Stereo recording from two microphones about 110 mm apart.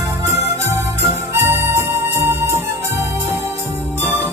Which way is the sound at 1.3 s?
20° right (ahead or behind).